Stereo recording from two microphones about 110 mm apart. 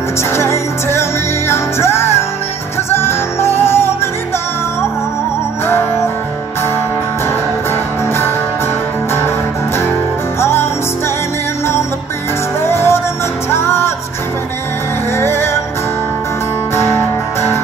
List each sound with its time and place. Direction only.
0.3 s music: 25° left (ahead or behind)
10.4 s music: 25° left (ahead or behind)
12.6 s music: 25° left (ahead or behind)
15.1 s music: 20° left (ahead or behind)
16.7 s music: 25° left (ahead or behind)